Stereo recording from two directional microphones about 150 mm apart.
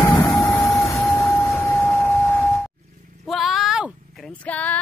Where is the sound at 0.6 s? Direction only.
20° left (ahead or behind).